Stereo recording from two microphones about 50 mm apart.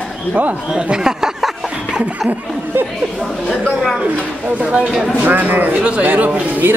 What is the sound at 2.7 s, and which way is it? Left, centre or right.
Speech, right.